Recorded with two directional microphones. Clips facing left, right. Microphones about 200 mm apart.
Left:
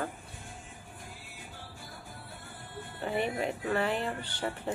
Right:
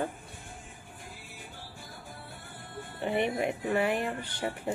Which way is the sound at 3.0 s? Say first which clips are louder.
Right 3 dB; 20° right (ahead or behind).